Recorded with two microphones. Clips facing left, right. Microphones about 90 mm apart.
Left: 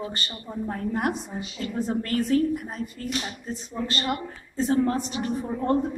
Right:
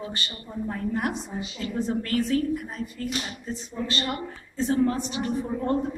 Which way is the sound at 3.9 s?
40° left (ahead or behind).